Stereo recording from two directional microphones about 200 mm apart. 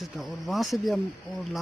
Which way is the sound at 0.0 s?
Centre (ahead or behind).